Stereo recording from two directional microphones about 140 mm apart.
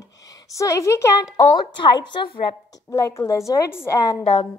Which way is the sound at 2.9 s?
20° left (ahead or behind).